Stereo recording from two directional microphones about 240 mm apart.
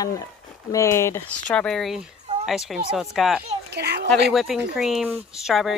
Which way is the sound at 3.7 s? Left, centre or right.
Right.